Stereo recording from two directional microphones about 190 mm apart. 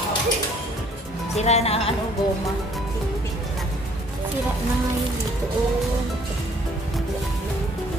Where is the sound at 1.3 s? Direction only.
35° left (ahead or behind).